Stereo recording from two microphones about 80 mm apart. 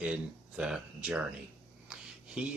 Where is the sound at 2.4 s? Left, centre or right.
Centre.